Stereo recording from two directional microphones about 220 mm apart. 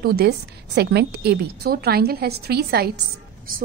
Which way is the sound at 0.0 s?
45° right (ahead or behind).